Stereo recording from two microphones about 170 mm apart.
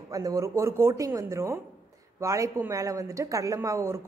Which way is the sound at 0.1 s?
20° right (ahead or behind).